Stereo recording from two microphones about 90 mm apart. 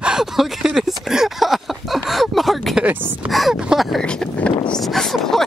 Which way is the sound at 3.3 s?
Centre (ahead or behind).